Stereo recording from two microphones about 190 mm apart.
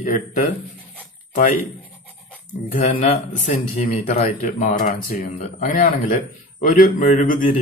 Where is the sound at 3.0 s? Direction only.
40° left (ahead or behind).